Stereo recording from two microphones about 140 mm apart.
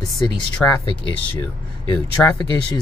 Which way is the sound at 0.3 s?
30° left (ahead or behind).